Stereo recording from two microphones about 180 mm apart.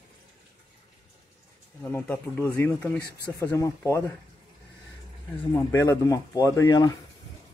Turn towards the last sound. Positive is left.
turn(degrees=20)  # may be behind; listen again after turning